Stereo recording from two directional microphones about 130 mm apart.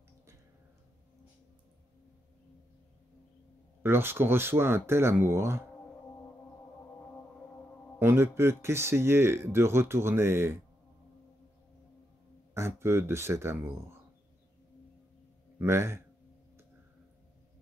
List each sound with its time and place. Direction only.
3.8 s speech: 15° right (ahead or behind)
8.0 s speech: 20° right (ahead or behind)
12.5 s speech: 20° right (ahead or behind)
15.6 s speech: 20° right (ahead or behind)